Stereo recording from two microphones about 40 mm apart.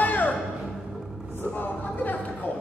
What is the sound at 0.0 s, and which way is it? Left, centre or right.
Music, left.